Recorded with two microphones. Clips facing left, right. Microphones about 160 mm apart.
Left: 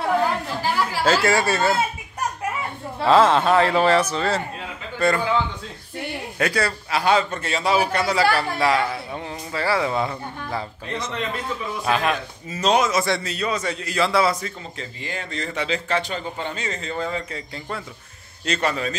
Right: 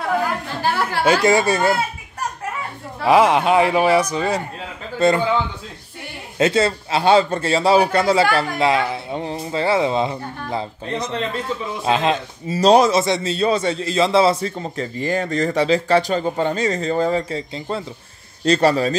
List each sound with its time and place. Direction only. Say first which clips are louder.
0.6 s chatter: right 6 dB; 65° right (ahead or behind)
1.0 s speech: right 4 dB; 15° right (ahead or behind)
3.1 s speech: right 2 dB; 15° right (ahead or behind)
6.3 s a man's voice: right 7 dB; 25° right (ahead or behind)
13.0 s a man's voice: right 5 dB; 25° right (ahead or behind)
14.6 s speech: right 10 dB; 45° right (ahead or behind)